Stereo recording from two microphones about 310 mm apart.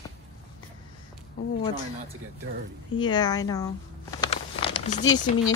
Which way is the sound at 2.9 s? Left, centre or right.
Centre.